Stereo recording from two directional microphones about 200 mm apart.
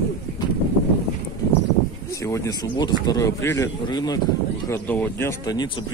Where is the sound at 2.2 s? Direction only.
15° left (ahead or behind).